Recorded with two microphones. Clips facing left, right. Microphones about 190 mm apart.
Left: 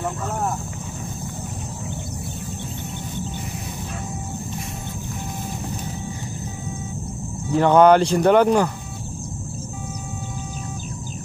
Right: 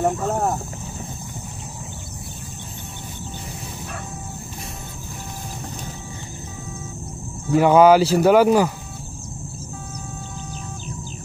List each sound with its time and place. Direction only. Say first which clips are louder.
0.0 s cricket: right 5 dB; 40° right (ahead or behind)
7.5 s speech: right 1 dB; 5° right (ahead or behind)